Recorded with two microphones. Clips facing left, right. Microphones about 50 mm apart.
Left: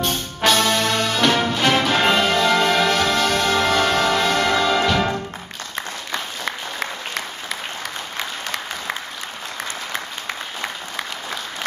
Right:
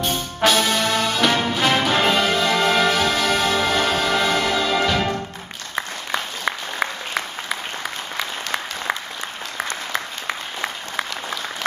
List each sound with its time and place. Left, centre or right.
0.0 s music: centre
5.8 s applause: centre
10.2 s applause: centre